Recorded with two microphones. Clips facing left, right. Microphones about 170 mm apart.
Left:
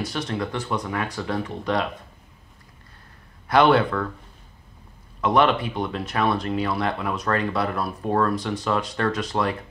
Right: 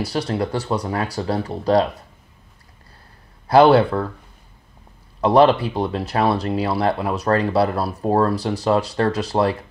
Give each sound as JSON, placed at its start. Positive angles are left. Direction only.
{"t": 0.0, "sound": "speech", "side_deg": -35}
{"t": 3.4, "sound": "speech", "side_deg": -30}
{"t": 5.2, "sound": "speech", "side_deg": -35}